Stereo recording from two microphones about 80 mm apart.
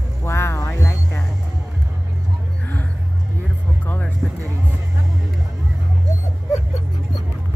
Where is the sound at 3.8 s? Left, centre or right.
Left.